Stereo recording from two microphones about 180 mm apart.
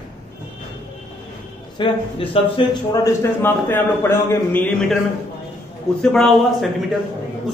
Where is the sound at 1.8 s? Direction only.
30° left (ahead or behind).